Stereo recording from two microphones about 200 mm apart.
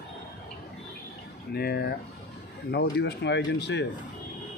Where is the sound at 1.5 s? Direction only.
50° left (ahead or behind).